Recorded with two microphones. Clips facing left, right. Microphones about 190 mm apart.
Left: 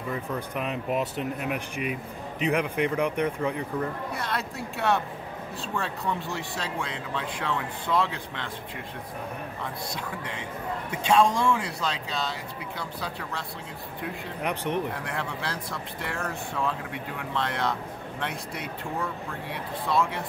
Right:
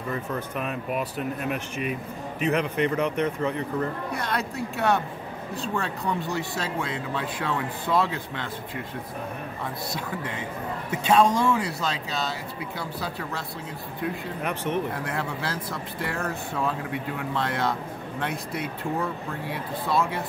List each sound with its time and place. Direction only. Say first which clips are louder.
0.1 s speech: right 1 dB; 15° left (ahead or behind); by 8.5 s 5° right (ahead or behind)
10.9 s speech: right 2 dB; 5° right (ahead or behind)
14.4 s speech: even; 15° left (ahead or behind)
15.0 s speech: right 2 dB; 5° right (ahead or behind)